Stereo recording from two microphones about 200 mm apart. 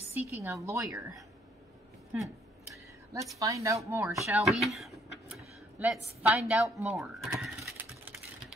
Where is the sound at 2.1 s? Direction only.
Centre (ahead or behind).